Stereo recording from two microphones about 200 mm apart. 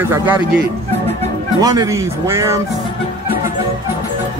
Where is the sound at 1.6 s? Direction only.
20° right (ahead or behind).